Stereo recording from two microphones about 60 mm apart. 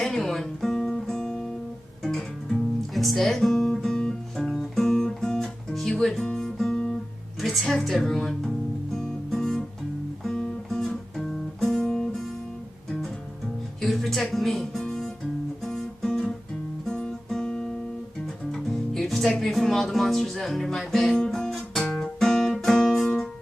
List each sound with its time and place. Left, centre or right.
0.0 s music: centre
2.9 s speech: centre
3.8 s guitar: centre
7.3 s music: centre
11.1 s guitar: centre
13.7 s music: centre
14.3 s speech: centre
15.6 s guitar: centre
18.2 s music: centre